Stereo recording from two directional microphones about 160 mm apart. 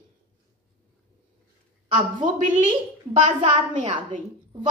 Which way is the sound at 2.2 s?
50° right (ahead or behind).